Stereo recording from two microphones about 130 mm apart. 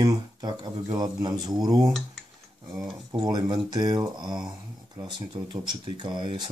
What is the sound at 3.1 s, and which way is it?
Speech, 30° right (ahead or behind).